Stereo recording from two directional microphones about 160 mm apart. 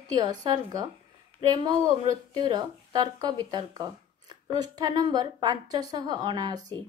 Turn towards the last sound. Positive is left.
turn(degrees=-25)  # may be behind; listen again after turning